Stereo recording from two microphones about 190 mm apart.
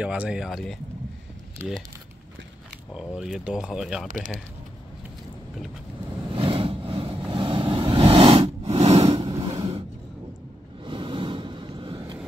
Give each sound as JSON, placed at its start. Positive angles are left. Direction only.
{"t": 0.0, "sound": "speech", "side_deg": -5}
{"t": 3.2, "sound": "speech", "side_deg": 0}
{"t": 6.3, "sound": "vehicle", "side_deg": -30}